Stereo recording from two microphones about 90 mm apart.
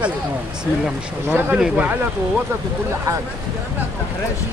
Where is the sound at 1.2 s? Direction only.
20° right (ahead or behind).